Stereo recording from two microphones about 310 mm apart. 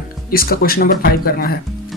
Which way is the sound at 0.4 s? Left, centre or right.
Left.